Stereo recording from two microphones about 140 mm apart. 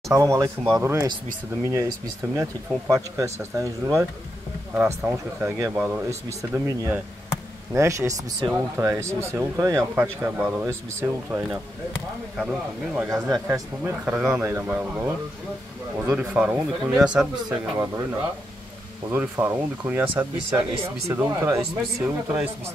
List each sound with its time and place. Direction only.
0.1 s speech: 20° right (ahead or behind)
13.1 s speech: 20° right (ahead or behind); by 17.3 s 5° right (ahead or behind)
17.7 s speech: 20° right (ahead or behind)